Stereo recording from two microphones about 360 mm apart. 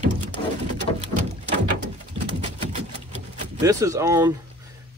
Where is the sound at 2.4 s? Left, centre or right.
Centre.